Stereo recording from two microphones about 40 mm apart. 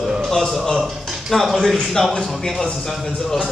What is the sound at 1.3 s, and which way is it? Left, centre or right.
A man's voice, centre.